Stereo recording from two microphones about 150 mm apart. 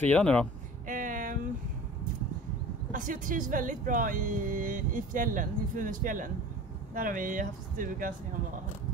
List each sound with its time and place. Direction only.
0.0 s speech: 10° left (ahead or behind)
0.8 s a sound: 65° right (ahead or behind)
2.9 s speech: 60° right (ahead or behind)